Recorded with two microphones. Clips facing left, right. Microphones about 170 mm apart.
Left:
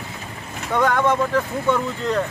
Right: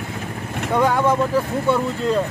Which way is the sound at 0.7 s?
10° right (ahead or behind).